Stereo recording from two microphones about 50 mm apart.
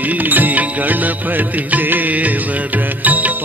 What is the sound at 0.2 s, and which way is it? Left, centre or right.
Music, right.